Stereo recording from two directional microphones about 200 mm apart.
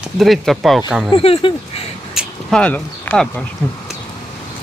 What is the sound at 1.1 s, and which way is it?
Speech, 25° left (ahead or behind).